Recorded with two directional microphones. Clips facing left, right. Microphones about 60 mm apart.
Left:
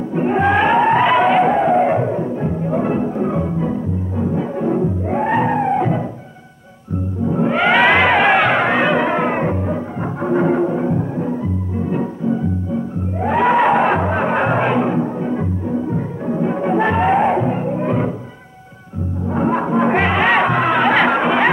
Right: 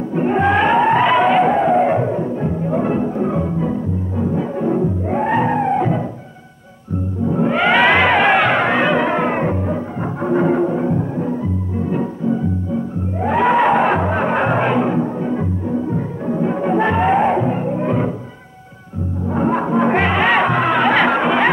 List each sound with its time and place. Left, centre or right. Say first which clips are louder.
0.1 s a sound: even; left
4.2 s music: even; left
7.2 s music: even; left
13.2 s music: even; left
19.2 s music: even; left